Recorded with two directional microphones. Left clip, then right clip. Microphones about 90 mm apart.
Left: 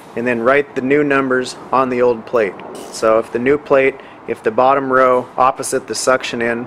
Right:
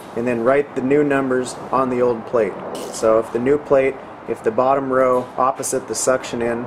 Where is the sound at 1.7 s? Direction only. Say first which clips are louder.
Left 4 dB; 55° left (ahead or behind).